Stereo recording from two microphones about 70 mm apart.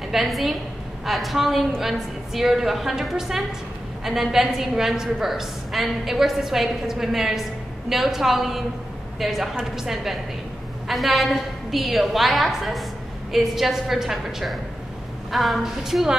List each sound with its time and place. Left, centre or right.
0.1 s a woman's voice: centre
10.9 s a woman's voice: centre